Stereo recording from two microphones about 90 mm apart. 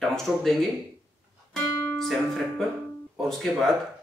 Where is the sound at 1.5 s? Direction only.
5° left (ahead or behind).